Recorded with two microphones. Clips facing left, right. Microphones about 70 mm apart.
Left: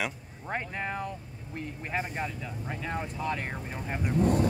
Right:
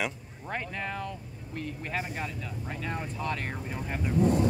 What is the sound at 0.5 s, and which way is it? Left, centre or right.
Speech, centre.